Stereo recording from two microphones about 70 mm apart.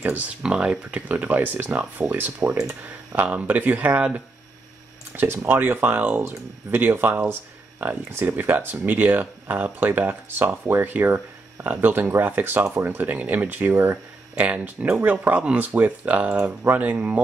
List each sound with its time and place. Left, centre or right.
0.4 s speech: centre
5.1 s speech: right